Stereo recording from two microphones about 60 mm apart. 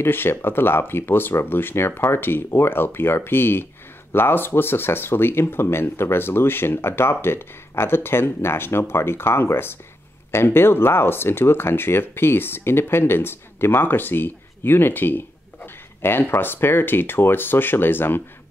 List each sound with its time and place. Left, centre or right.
0.0 s speech: left